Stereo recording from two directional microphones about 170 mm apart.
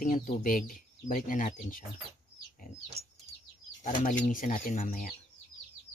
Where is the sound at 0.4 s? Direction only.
55° left (ahead or behind).